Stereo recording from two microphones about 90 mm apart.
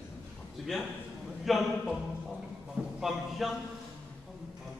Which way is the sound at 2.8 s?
20° right (ahead or behind).